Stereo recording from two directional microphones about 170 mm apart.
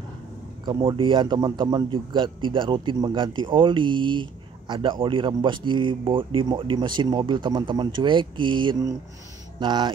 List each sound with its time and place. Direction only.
0.7 s a man's voice: 30° right (ahead or behind)